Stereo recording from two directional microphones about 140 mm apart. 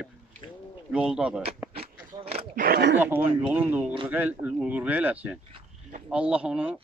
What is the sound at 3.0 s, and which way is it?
Speech, 15° right (ahead or behind).